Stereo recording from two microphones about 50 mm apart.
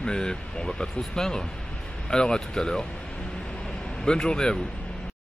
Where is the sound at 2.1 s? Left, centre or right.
Centre.